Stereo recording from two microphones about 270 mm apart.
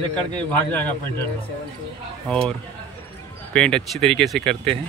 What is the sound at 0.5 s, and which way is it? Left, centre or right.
Speech, centre.